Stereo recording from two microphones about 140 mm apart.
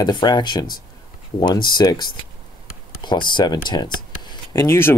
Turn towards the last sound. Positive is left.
turn(degrees=20)  # may be behind; listen again after turning